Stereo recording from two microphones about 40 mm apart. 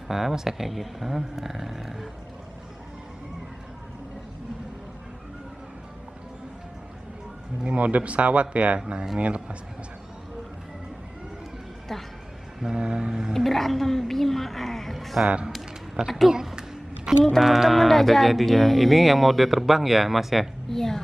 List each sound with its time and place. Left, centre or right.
0.1 s speech: centre
7.6 s speech: right
8.7 s vehicle: right
9.2 s speech: right
11.9 s speech: centre
12.6 s vehicle: right
13.3 s speech: centre
16.3 s a sound: centre
17.4 s speech: centre
20.7 s a woman's voice: centre